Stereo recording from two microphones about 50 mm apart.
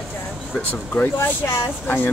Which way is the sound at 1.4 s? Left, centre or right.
Left.